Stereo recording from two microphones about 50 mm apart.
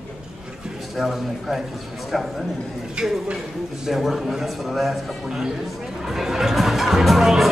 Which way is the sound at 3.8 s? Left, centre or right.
Centre.